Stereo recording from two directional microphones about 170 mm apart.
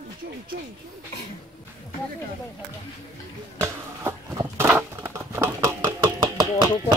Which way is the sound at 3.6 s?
15° right (ahead or behind).